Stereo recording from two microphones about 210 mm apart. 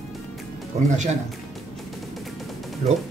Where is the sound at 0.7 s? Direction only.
35° right (ahead or behind).